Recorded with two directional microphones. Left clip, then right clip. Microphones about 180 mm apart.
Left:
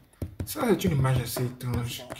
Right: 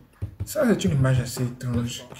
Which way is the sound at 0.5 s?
35° left (ahead or behind).